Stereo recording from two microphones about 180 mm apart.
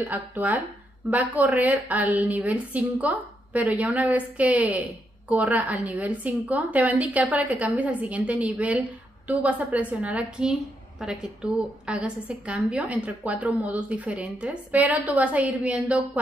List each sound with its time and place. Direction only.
0.1 s a woman's voice: 10° right (ahead or behind)